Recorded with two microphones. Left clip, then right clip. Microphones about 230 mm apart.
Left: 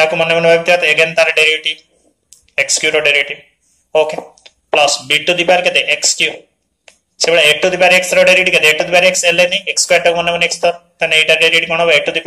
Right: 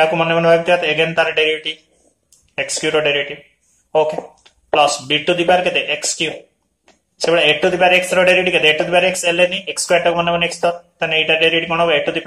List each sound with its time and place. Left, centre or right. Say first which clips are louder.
0.0 s speech: left 3 dB; left